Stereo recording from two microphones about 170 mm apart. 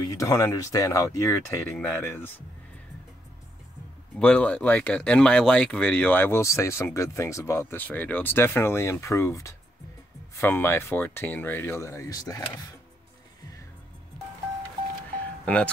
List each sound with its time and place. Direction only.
0.0 s speech: 20° left (ahead or behind)
4.2 s speech: 10° left (ahead or behind)
15.4 s speech: 5° left (ahead or behind)